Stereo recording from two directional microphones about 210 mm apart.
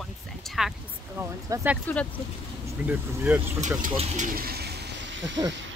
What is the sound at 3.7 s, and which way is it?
Speech, 35° right (ahead or behind).